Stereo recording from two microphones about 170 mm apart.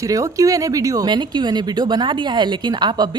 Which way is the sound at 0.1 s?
20° right (ahead or behind).